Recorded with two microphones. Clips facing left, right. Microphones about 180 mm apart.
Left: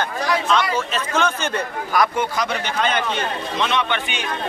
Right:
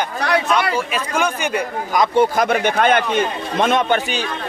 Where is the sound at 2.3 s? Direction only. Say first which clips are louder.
Right 7 dB; 55° right (ahead or behind).